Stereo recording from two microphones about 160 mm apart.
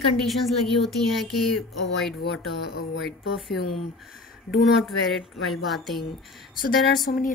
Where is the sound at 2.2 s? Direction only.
90° left.